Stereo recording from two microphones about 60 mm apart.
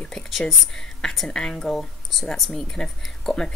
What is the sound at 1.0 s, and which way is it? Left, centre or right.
Speech, centre.